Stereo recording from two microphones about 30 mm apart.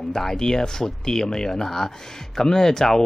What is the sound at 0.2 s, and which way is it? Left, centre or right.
Speech, centre.